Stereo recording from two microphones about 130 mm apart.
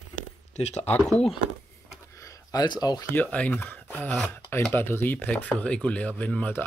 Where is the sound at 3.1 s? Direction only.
10° left (ahead or behind).